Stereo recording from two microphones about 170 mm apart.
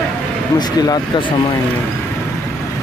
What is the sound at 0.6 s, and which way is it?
Speech, 25° left (ahead or behind).